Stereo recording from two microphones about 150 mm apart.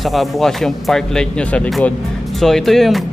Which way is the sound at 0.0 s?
Centre (ahead or behind).